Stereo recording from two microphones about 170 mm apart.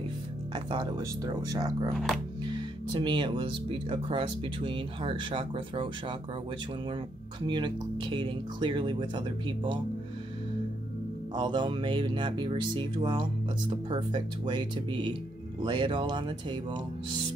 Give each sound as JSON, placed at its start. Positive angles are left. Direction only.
{"t": 0.7, "sound": "speech", "side_deg": -25}
{"t": 2.9, "sound": "speech", "side_deg": -25}
{"t": 7.4, "sound": "speech", "side_deg": -30}
{"t": 11.3, "sound": "speech", "side_deg": -25}